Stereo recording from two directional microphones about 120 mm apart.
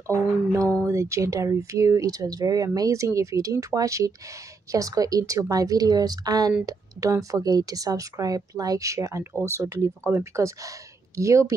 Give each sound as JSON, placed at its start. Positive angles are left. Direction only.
{"t": 0.8, "sound": "speech", "side_deg": -25}